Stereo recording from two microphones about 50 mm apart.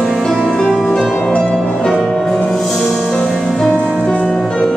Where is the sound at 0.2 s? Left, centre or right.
Centre.